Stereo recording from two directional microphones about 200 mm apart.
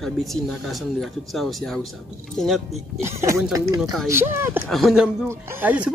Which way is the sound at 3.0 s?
15° right (ahead or behind).